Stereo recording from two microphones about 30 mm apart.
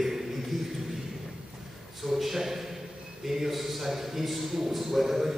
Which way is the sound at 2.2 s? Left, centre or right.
Centre.